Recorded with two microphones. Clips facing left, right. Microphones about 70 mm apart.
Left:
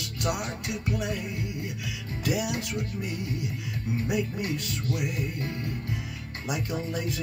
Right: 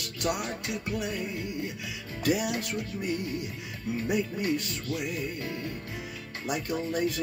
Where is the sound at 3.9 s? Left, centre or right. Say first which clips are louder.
Even; left.